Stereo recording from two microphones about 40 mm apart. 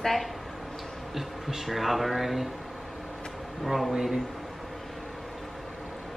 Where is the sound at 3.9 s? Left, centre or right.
Centre.